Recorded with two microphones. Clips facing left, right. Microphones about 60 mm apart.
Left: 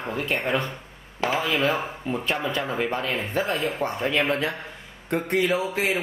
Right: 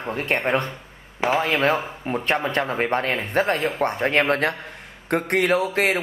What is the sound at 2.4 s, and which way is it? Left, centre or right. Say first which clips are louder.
Speech: right 3 dB; right.